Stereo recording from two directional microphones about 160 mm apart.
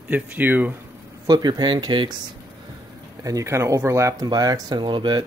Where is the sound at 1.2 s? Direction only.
25° right (ahead or behind).